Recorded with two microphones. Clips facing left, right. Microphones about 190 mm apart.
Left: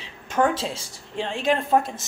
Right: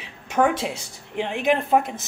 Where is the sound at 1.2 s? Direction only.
15° right (ahead or behind).